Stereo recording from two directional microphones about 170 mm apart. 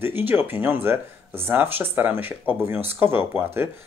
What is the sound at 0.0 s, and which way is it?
Speech, 10° right (ahead or behind).